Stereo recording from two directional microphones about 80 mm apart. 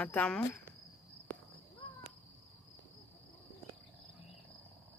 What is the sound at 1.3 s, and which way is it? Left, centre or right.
Cricket, centre.